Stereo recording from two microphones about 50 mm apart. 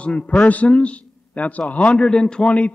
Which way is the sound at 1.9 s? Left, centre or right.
Centre.